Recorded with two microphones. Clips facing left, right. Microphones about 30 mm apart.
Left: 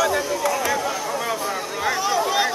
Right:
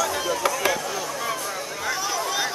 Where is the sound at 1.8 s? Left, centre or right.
Left.